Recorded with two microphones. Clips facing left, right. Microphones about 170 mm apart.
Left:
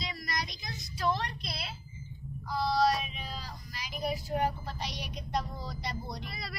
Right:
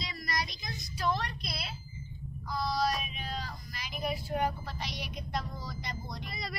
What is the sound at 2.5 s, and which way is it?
Child singing, 30° left (ahead or behind).